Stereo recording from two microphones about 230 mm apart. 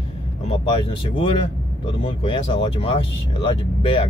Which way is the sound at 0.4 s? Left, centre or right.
Left.